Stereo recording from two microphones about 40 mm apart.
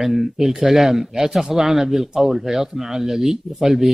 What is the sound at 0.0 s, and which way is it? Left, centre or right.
Speech, centre.